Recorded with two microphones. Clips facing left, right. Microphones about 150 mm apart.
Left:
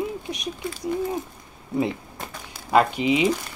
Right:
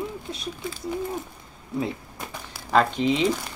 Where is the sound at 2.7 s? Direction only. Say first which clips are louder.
Left 2 dB; 10° left (ahead or behind).